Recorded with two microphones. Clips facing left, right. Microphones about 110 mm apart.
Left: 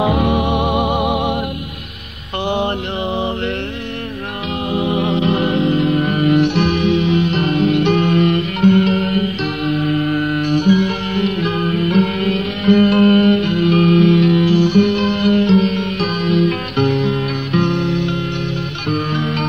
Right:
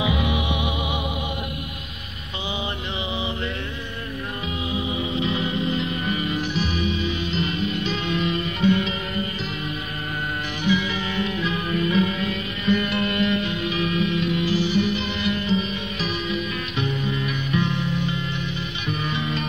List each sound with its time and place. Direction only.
0.0 s music: 55° left (ahead or behind)
2.4 s mantra: 65° left (ahead or behind)
4.7 s music: 65° left (ahead or behind)